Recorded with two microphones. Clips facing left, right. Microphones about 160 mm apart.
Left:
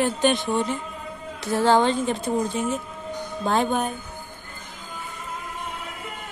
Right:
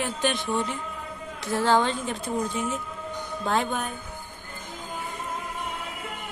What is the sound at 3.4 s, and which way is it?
Speech, 35° left (ahead or behind).